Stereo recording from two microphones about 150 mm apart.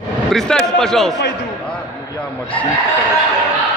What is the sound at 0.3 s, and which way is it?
Speech, 5° left (ahead or behind).